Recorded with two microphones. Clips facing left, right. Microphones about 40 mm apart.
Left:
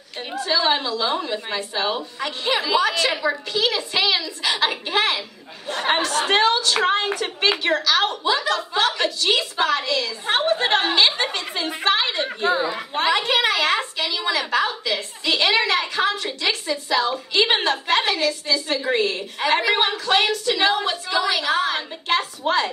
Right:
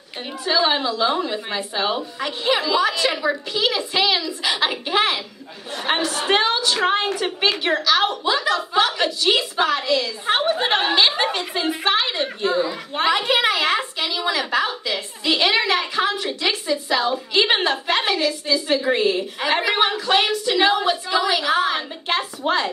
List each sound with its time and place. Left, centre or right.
0.4 s a woman's voice: centre
12.4 s speech: centre
12.9 s a woman's voice: centre